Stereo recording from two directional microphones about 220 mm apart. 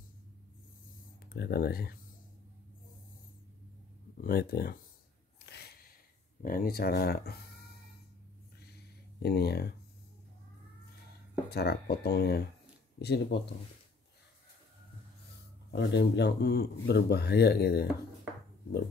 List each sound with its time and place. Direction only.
1.3 s speech: 45° left (ahead or behind)
4.2 s speech: 45° left (ahead or behind)
5.4 s a sound: 50° left (ahead or behind)
6.4 s speech: 40° left (ahead or behind)
9.2 s speech: 45° left (ahead or behind)
11.5 s speech: 45° left (ahead or behind)
15.7 s speech: 50° left (ahead or behind)